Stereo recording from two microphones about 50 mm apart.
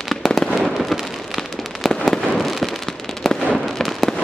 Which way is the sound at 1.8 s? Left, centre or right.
Centre.